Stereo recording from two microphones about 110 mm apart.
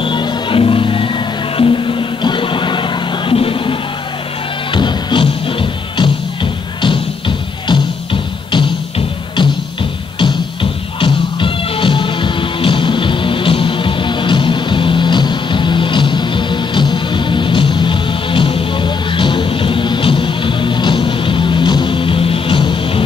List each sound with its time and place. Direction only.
0.0 s music: 50° left (ahead or behind)
4.7 s music: 45° left (ahead or behind)
10.1 s music: 50° left (ahead or behind)